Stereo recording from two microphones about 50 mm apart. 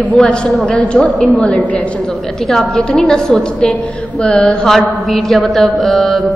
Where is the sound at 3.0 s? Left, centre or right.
Centre.